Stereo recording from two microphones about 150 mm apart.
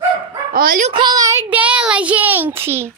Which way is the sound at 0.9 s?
25° right (ahead or behind).